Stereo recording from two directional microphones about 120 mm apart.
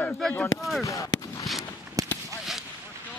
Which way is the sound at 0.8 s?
25° left (ahead or behind).